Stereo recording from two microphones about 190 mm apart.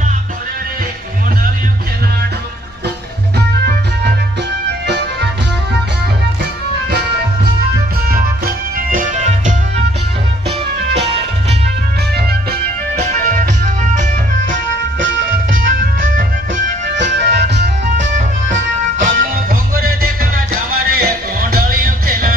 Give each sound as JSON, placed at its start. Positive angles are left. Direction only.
{"t": 3.3, "sound": "music", "side_deg": -60}
{"t": 8.7, "sound": "music", "side_deg": -45}
{"t": 15.5, "sound": "music", "side_deg": -45}
{"t": 16.8, "sound": "music", "side_deg": -65}
{"t": 18.1, "sound": "music", "side_deg": -40}